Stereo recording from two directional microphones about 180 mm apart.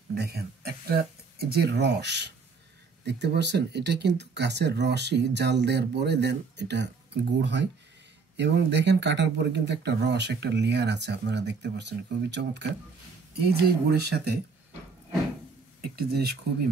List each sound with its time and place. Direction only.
0.1 s speech: 65° right (ahead or behind)
13.7 s speech: 60° right (ahead or behind)
16.0 s speech: 60° right (ahead or behind)